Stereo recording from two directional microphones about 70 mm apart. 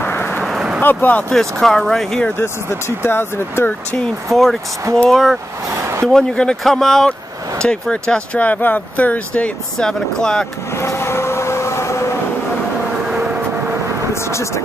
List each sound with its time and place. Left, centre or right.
0.0 s a sound: left
0.4 s vehicle: centre
0.7 s speech: left
1.3 s speech: centre
3.0 s speech: left
4.3 s speech: centre
6.0 s speech: centre
9.8 s speech: centre
10.8 s vehicle: left
13.1 s vehicle: centre
14.3 s speech: left